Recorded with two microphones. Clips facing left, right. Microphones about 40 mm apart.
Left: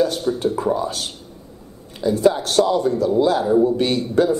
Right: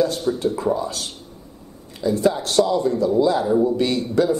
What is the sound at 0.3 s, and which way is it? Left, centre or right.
Speech, centre.